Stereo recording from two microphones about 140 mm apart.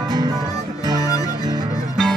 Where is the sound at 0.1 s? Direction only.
30° right (ahead or behind).